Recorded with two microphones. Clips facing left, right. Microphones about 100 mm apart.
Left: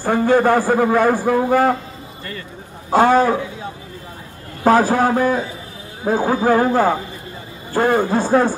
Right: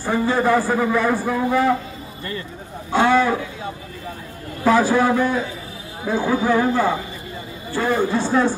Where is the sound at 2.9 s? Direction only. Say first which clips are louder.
Left 3 dB; 40° left (ahead or behind).